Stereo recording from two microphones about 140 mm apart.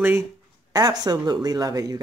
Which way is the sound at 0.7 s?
30° right (ahead or behind).